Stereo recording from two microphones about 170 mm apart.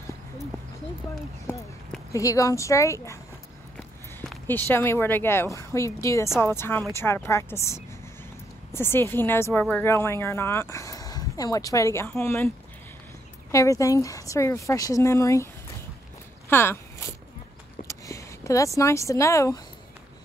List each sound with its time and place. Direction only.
2.1 s a woman's voice: 20° left (ahead or behind)
4.5 s a woman's voice: 10° left (ahead or behind)
13.5 s speech: 20° left (ahead or behind)
16.4 s speech: 15° left (ahead or behind)
17.8 s speech: 20° left (ahead or behind)